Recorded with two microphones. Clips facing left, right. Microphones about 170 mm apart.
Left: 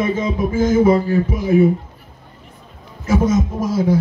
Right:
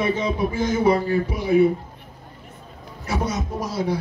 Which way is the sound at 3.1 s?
45° left (ahead or behind).